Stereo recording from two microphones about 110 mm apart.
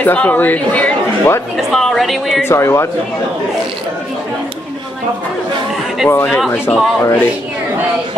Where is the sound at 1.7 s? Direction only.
Centre (ahead or behind).